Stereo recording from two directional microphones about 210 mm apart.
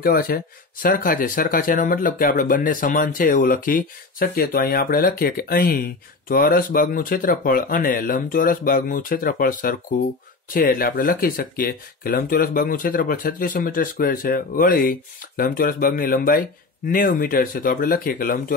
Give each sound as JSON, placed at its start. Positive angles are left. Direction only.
{"t": 0.0, "sound": "speech", "side_deg": 45}